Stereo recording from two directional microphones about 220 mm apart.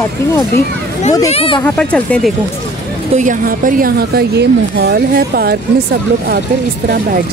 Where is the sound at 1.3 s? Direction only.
25° left (ahead or behind).